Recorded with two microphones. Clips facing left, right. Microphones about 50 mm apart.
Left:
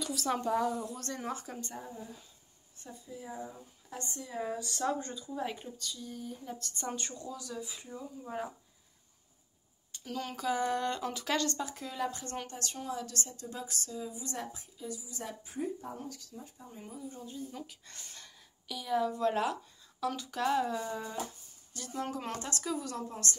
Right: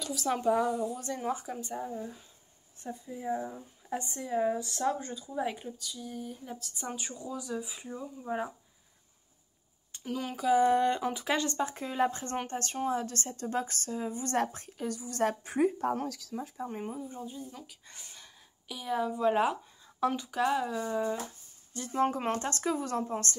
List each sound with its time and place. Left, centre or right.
0.0 s speech: centre; by 4.4 s right
4.4 s speech: centre
4.8 s speech: centre
10.0 s speech: centre; by 16.7 s right
16.9 s speech: right
17.3 s speech: centre; by 20.2 s right
20.2 s speech: centre
21.7 s speech: right